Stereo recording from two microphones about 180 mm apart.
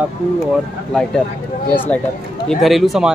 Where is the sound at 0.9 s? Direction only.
5° left (ahead or behind).